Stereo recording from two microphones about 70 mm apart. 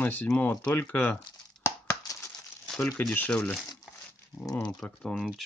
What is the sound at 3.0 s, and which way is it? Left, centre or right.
Speech, left.